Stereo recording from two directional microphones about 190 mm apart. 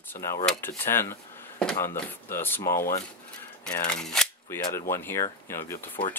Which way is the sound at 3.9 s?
5° left (ahead or behind).